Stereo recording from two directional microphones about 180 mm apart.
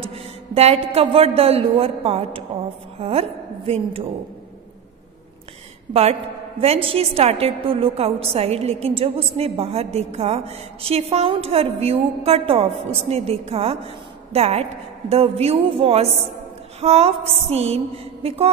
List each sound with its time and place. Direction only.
0.0 s a woman's voice: 35° right (ahead or behind)
6.6 s a woman's voice: 30° right (ahead or behind)